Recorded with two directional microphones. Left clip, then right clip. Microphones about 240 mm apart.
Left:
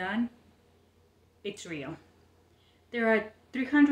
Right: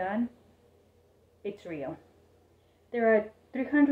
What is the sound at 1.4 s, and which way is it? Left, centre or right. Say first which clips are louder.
Speech: right 1 dB; left.